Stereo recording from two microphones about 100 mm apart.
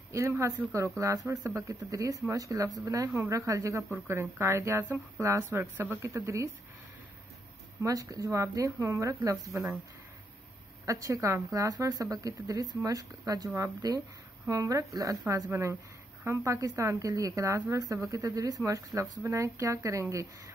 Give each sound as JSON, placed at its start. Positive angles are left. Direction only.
{"t": 0.1, "sound": "speech", "side_deg": -30}
{"t": 7.8, "sound": "speech", "side_deg": -35}
{"t": 10.9, "sound": "speech", "side_deg": -30}